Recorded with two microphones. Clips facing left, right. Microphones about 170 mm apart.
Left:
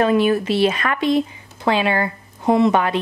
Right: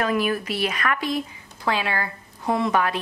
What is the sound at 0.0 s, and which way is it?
Speech, 25° left (ahead or behind).